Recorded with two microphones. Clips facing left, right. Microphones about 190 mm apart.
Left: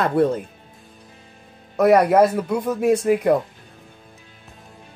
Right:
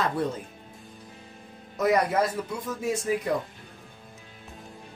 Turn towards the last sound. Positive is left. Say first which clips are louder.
# left 10 dB
turn(degrees=65)  # may be behind; listen again after turning